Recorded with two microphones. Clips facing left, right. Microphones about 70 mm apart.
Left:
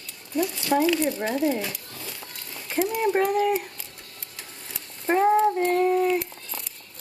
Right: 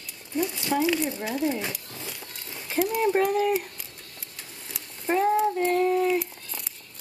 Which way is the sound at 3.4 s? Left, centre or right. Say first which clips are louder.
Left 1 dB; centre.